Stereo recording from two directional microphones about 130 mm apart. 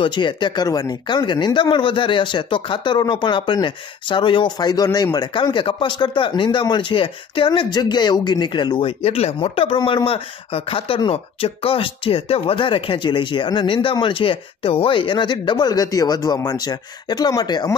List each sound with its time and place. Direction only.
0.0 s speech: 35° left (ahead or behind)
9.0 s speech: 50° left (ahead or behind); by 17.7 s 30° left (ahead or behind)